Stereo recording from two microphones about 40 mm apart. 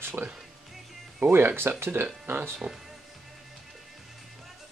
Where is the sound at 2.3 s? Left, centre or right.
Right.